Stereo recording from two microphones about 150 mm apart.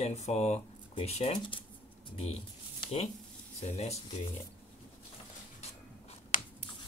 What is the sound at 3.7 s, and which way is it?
Speech, 45° left (ahead or behind).